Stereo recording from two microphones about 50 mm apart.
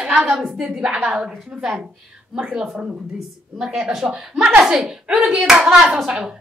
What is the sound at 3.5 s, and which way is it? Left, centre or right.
A woman's voice, centre.